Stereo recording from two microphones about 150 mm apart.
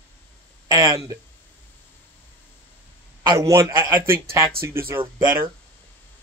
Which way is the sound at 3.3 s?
20° right (ahead or behind).